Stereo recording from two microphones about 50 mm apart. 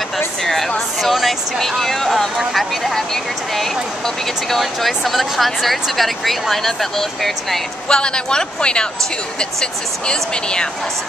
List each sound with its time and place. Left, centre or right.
0.4 s speech: centre
7.9 s speech: centre